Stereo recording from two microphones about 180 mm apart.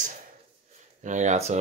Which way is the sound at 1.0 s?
40° right (ahead or behind).